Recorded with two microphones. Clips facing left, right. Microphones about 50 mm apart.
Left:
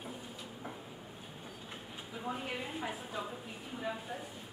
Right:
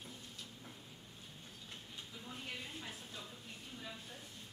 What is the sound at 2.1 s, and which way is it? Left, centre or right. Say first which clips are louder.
A woman's voice: left 10 dB; left.